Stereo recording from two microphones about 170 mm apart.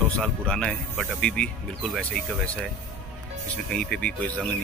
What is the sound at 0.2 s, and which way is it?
Speech, 5° left (ahead or behind).